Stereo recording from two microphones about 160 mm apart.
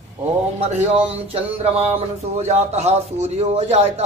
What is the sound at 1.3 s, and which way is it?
Speech, 40° right (ahead or behind).